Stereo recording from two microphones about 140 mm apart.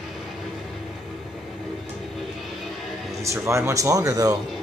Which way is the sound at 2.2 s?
Centre (ahead or behind).